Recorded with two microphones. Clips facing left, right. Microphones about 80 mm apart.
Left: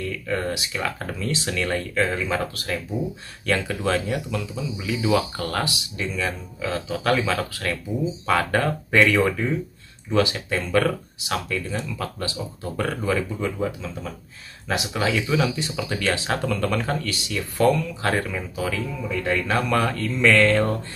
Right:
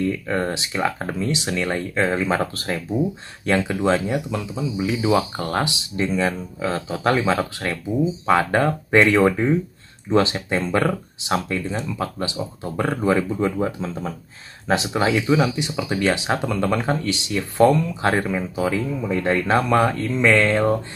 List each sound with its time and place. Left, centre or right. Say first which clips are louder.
0.0 s speech: right 4 dB; right
19.0 s speech: right 3 dB; right; by 20.7 s centre